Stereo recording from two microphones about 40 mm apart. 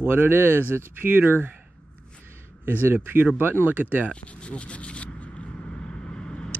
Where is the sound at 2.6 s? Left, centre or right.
Right.